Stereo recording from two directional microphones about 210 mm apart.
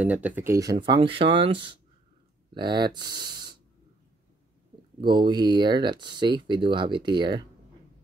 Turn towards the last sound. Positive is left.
turn(degrees=-20)  # may be behind; listen again after turning